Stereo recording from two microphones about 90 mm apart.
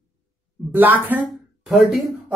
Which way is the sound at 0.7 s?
20° right (ahead or behind).